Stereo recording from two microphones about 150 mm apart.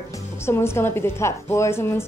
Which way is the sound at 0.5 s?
15° left (ahead or behind).